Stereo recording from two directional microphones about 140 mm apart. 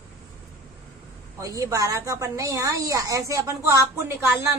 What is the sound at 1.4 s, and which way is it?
A woman's voice, 25° right (ahead or behind).